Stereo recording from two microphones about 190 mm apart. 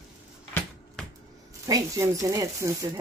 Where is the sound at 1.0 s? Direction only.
5° left (ahead or behind).